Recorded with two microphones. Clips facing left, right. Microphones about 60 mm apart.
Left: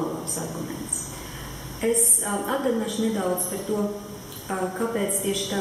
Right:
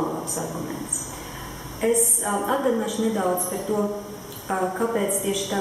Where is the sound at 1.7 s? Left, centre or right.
Centre.